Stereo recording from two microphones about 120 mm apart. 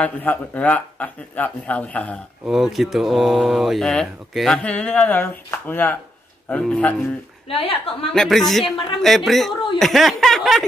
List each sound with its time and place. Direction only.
0.0 s speech: 10° left (ahead or behind)
2.4 s speech: centre (ahead or behind)
7.4 s a woman's voice: 50° left (ahead or behind)
8.1 s speech: 5° left (ahead or behind)